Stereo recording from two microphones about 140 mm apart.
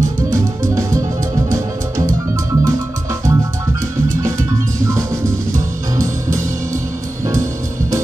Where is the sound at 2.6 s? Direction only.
20° right (ahead or behind).